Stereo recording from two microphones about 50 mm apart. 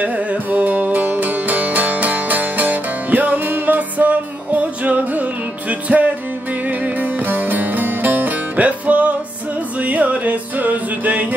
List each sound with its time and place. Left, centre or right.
0.0 s music: right